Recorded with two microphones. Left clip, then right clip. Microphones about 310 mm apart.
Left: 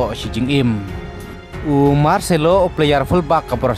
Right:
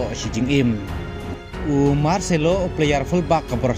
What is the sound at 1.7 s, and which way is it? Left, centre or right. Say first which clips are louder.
Speech: left 5 dB; centre.